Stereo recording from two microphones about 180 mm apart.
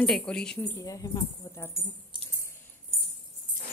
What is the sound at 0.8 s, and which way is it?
Speech, 20° left (ahead or behind).